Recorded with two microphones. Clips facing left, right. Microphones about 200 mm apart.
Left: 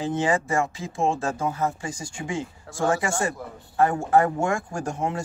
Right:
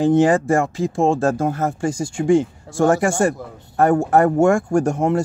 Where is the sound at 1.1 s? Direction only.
75° right (ahead or behind).